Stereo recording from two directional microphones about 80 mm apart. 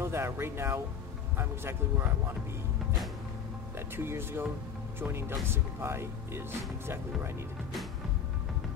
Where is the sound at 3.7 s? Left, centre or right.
Right.